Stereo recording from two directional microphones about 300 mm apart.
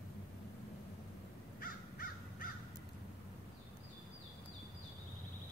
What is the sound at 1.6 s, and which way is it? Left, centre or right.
Crow, left.